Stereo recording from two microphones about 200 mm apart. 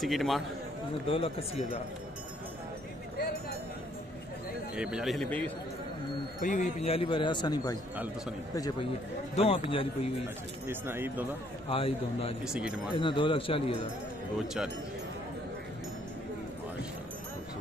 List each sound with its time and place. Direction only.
0.0 s a man's voice: centre (ahead or behind)
1.0 s speech: 30° left (ahead or behind)
4.7 s a man's voice: 5° right (ahead or behind)
6.4 s speech: 40° left (ahead or behind); by 7.7 s 20° left (ahead or behind)
9.3 s speech: 30° left (ahead or behind)
10.7 s speech: 10° right (ahead or behind)
11.7 s speech: 30° left (ahead or behind)
12.4 s a man's voice: 5° right (ahead or behind)
12.9 s speech: 25° left (ahead or behind)